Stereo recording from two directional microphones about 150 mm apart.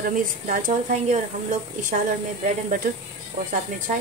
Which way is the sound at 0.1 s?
60° right (ahead or behind).